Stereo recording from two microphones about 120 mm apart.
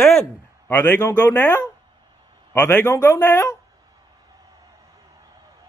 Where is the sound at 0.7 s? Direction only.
20° left (ahead or behind).